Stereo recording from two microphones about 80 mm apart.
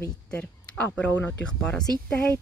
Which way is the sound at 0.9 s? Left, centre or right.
Centre.